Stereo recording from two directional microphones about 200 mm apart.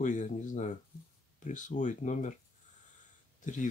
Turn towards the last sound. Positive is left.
turn(degrees=40)  # may be behind; listen again after turning